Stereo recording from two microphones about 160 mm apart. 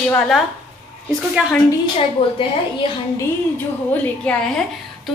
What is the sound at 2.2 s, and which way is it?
Speech, 35° left (ahead or behind).